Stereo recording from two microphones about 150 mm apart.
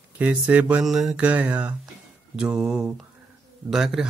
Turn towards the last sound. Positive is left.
turn(degrees=-5)  # may be behind; listen again after turning